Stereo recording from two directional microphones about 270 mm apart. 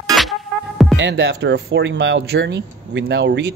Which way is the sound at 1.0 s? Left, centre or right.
Right.